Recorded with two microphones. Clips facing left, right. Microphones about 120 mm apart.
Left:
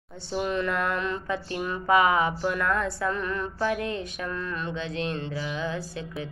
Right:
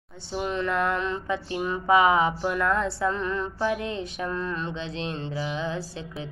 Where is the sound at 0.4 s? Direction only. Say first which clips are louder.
Right 1 dB; 25° right (ahead or behind).